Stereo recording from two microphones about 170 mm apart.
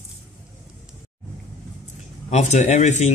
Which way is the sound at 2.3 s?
45° left (ahead or behind).